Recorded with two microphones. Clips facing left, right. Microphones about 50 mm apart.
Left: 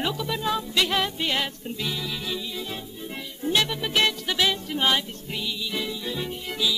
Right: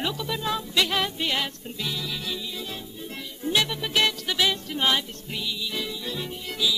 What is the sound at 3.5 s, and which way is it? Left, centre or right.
Music, centre.